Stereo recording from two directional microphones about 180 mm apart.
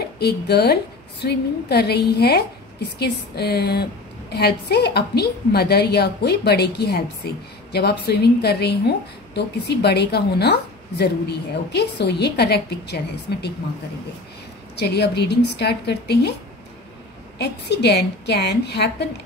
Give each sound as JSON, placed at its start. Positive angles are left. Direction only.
{"t": 0.0, "sound": "a woman's voice", "side_deg": 60}
{"t": 14.8, "sound": "a woman's voice", "side_deg": 65}
{"t": 17.4, "sound": "a woman's voice", "side_deg": 65}